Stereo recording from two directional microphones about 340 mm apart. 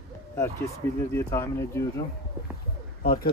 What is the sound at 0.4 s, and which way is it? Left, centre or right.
Speech, centre.